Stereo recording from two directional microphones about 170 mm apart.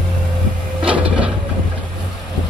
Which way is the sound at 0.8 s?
5° right (ahead or behind).